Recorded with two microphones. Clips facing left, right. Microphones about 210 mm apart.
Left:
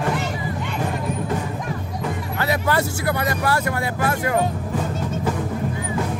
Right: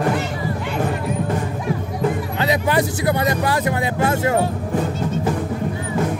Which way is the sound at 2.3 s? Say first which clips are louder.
Even; 20° right (ahead or behind).